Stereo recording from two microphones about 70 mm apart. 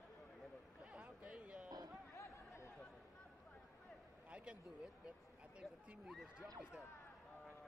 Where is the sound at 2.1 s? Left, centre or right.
Left.